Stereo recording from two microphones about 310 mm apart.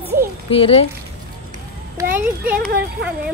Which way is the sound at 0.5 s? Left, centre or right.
Centre.